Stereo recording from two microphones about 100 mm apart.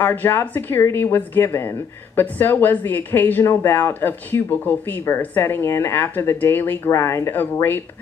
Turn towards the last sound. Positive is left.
turn(degrees=20)  # may be behind; listen again after turning